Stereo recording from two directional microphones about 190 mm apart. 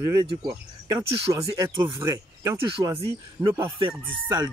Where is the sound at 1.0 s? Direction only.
15° right (ahead or behind).